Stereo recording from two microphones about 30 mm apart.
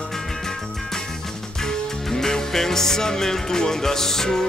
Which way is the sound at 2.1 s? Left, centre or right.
Centre.